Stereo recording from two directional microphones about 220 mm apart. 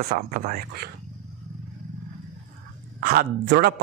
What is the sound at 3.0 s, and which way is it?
Speech, 40° right (ahead or behind).